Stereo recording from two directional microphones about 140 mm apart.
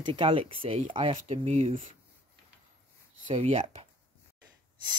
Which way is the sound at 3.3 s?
50° right (ahead or behind).